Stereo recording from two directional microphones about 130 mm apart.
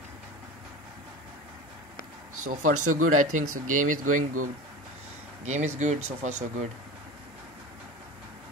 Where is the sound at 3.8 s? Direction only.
85° right.